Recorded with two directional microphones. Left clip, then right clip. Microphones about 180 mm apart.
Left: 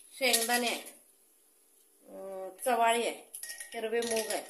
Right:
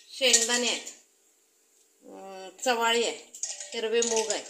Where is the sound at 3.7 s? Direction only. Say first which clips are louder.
Right 6 dB; 35° right (ahead or behind).